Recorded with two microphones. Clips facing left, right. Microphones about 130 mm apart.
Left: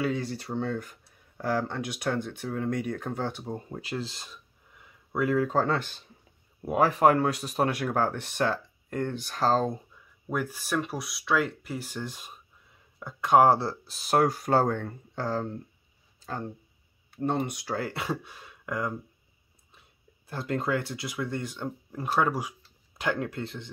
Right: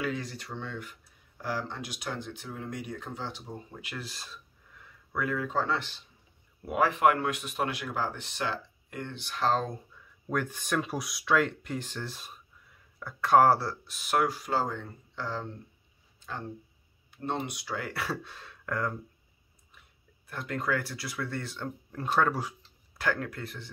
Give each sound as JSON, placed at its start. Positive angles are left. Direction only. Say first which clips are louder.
{"t": 0.0, "sound": "speech", "louder": "left 4 dB", "side_deg": 30}
{"t": 5.2, "sound": "speech", "louder": "left 6 dB", "side_deg": 35}
{"t": 6.6, "sound": "speech", "louder": "left 3 dB", "side_deg": 35}
{"t": 7.8, "sound": "speech", "louder": "left 6 dB", "side_deg": 55}
{"t": 9.9, "sound": "speech", "louder": "left 1 dB", "side_deg": 10}
{"t": 17.2, "sound": "speech", "louder": "left 5 dB", "side_deg": 50}
{"t": 17.8, "sound": "speech", "louder": "left 2 dB", "side_deg": 20}
{"t": 19.7, "sound": "speech", "louder": "left 1 dB", "side_deg": 30}